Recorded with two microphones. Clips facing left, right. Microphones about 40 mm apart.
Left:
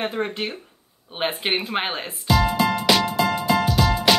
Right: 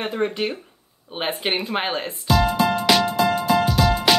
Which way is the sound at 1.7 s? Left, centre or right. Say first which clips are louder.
Right 1 dB; centre.